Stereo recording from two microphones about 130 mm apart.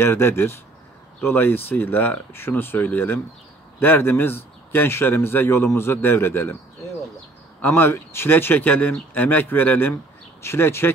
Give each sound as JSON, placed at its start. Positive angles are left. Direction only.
{"t": 0.0, "sound": "speech", "side_deg": 20}
{"t": 7.6, "sound": "speech", "side_deg": 15}